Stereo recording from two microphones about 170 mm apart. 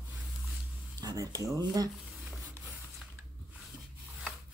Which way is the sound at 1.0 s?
20° right (ahead or behind).